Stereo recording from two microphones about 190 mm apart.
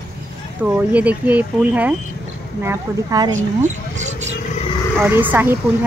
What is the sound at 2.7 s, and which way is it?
Speech, 20° right (ahead or behind).